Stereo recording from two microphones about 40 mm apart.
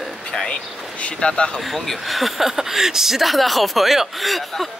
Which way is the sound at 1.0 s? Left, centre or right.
Left.